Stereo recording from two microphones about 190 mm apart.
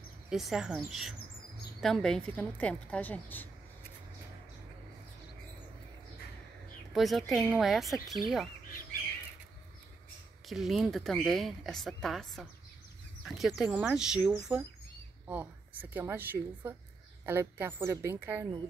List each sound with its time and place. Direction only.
0.3 s a woman's voice: centre (ahead or behind)
6.9 s speech: centre (ahead or behind)
10.4 s a woman's voice: centre (ahead or behind)